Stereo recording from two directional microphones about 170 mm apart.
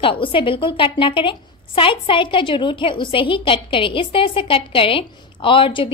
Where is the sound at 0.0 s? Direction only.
30° left (ahead or behind).